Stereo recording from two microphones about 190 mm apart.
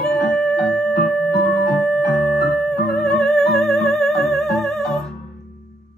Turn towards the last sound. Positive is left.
turn(degrees=5)  # may be behind; listen again after turning